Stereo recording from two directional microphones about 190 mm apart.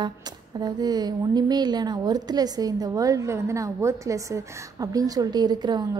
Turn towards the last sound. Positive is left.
turn(degrees=-20)  # may be behind; listen again after turning